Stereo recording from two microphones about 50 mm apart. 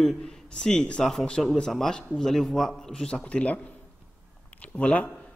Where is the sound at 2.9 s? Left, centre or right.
Centre.